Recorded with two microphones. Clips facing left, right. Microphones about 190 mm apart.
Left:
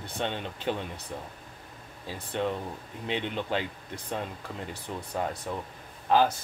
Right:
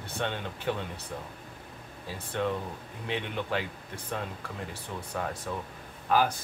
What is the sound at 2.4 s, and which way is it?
Speech, 25° left (ahead or behind).